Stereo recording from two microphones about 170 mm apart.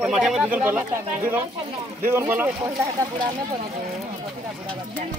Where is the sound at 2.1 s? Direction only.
10° right (ahead or behind).